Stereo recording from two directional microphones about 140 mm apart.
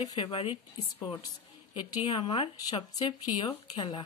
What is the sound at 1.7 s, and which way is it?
Speech, 30° left (ahead or behind).